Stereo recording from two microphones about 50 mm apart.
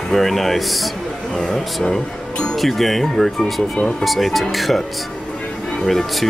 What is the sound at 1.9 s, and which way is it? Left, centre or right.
Speech, centre.